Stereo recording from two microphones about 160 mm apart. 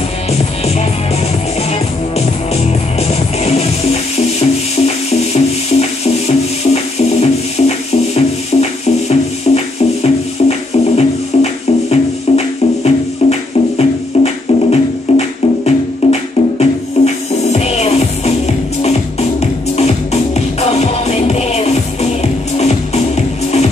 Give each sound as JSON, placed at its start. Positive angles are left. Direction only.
{"t": 1.7, "sound": "music", "side_deg": 40}
{"t": 19.4, "sound": "music", "side_deg": 45}